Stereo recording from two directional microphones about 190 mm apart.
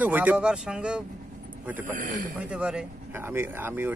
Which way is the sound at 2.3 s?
5° right (ahead or behind).